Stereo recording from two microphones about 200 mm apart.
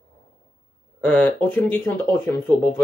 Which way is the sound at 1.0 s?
5° left (ahead or behind).